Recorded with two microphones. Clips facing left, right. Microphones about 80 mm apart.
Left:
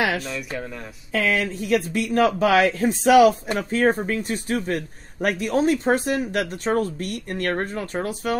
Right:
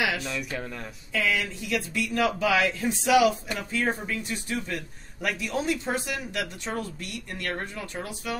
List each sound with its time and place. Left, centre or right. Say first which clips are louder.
0.2 s speech: left 2 dB; centre
1.1 s a man's voice: left 5 dB; left